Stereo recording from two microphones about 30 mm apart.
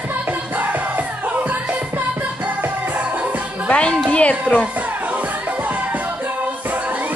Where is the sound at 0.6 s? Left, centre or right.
Right.